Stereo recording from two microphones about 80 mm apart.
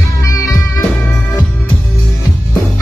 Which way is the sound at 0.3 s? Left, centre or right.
Left.